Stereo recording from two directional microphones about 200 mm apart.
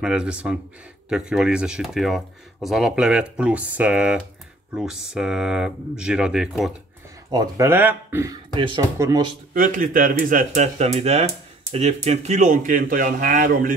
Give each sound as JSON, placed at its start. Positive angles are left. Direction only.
{"t": 0.0, "sound": "speech", "side_deg": -5}
{"t": 7.2, "sound": "speech", "side_deg": -20}
{"t": 8.5, "sound": "speech", "side_deg": -25}
{"t": 9.5, "sound": "speech", "side_deg": -45}